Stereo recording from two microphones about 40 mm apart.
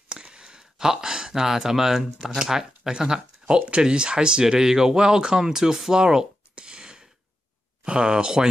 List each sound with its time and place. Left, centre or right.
0.1 s speech: right